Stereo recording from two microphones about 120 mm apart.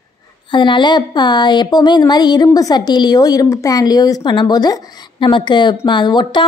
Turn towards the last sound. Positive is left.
turn(degrees=40)  # may be behind; listen again after turning